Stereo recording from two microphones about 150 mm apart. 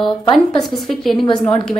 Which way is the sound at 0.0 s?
30° left (ahead or behind).